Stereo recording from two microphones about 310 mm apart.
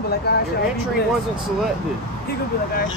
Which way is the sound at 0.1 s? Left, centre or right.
Left.